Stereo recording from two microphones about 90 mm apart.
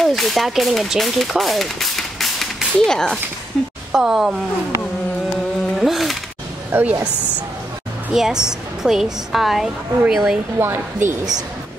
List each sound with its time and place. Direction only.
0.0 s a woman's voice: centre (ahead or behind)
5.8 s a sound: centre (ahead or behind)
6.7 s speech: 15° right (ahead or behind)
8.1 s a woman's voice: 5° right (ahead or behind)
10.6 s a woman's voice: 25° right (ahead or behind)